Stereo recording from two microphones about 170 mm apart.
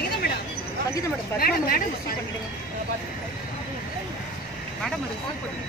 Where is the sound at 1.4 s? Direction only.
60° left (ahead or behind).